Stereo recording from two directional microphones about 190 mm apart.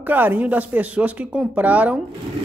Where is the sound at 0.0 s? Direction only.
10° right (ahead or behind).